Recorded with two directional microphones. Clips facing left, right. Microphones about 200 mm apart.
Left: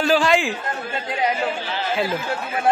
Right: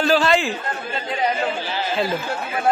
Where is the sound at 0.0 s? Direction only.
15° left (ahead or behind).